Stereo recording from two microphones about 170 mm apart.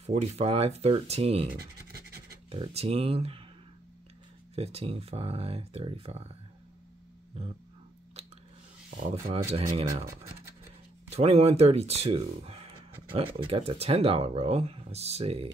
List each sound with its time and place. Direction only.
0.0 s speech: 40° right (ahead or behind)
1.6 s scratch: 65° right (ahead or behind)
2.5 s speech: 35° right (ahead or behind)
4.6 s speech: 35° right (ahead or behind)
7.4 s speech: 35° right (ahead or behind)
9.3 s speech: 35° right (ahead or behind)
11.1 s speech: 35° right (ahead or behind)